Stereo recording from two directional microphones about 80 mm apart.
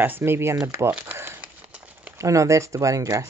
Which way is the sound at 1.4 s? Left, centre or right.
Centre.